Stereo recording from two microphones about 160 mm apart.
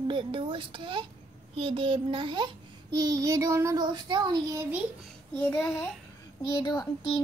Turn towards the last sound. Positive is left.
turn(degrees=25)  # may be behind; listen again after turning